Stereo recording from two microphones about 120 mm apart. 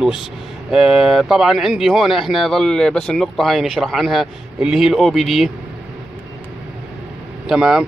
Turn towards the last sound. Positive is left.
turn(degrees=-5)  # may be behind; listen again after turning